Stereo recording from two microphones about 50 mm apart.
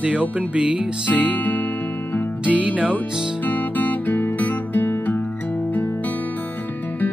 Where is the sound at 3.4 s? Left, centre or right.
Left.